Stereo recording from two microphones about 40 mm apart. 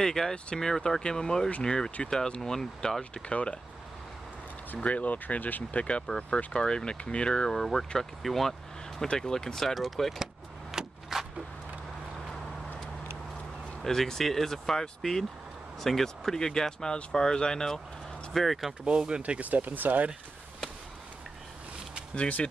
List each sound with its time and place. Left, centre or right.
0.0 s speech: centre
3.0 s speech: left
4.8 s speech: left
5.8 s speech: left
7.5 s speech: centre
9.0 s speech: left; by 10.1 s centre
10.7 s a sound: centre
13.8 s speech: centre
18.3 s speech: centre
18.9 s speech: right
19.2 s speech: right